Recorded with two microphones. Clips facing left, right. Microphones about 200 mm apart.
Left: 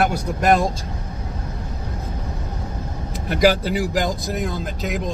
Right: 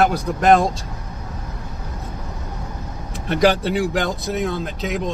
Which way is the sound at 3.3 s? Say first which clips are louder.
Right 1 dB; 5° left (ahead or behind).